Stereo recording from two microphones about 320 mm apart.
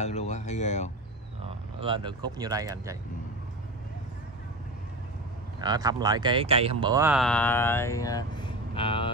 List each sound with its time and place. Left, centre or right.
0.0 s speech: left
1.8 s speech: centre
5.6 s speech: centre